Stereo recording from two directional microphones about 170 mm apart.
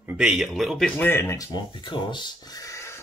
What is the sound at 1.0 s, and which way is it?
Speech, 15° left (ahead or behind).